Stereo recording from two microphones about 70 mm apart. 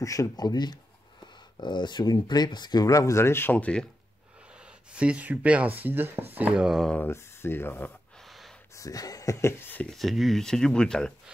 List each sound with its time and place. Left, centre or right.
0.0 s speech: left
0.4 s speech: left
1.2 s speech: left
2.9 s speech: left
3.5 s speech: centre
4.6 s speech: centre
6.5 s speech: centre
7.1 s speech: left
8.2 s gasp: centre
8.7 s speech: left
9.8 s speech: centre